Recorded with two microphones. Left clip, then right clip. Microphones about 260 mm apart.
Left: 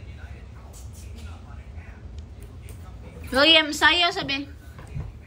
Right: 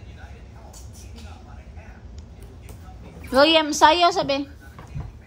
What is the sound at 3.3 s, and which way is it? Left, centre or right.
A woman's voice, centre.